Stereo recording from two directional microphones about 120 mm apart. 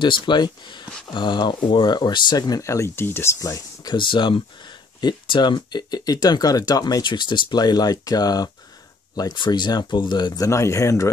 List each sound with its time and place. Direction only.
0.0 s speech: 40° left (ahead or behind)
3.9 s speech: 40° left (ahead or behind); by 11.1 s 25° left (ahead or behind)